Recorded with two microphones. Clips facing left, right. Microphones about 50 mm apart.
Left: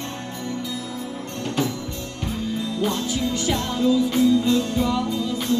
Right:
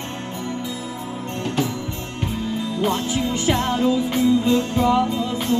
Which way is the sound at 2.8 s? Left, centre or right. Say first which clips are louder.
Right 3 dB; right.